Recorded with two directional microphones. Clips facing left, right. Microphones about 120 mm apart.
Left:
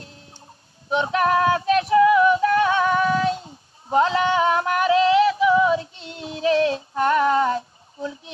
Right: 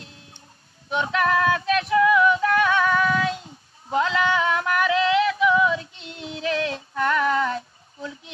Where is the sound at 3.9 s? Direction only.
30° left (ahead or behind).